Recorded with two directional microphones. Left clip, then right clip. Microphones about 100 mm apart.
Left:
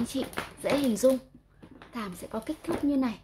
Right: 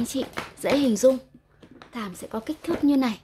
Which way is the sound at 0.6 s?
45° right (ahead or behind).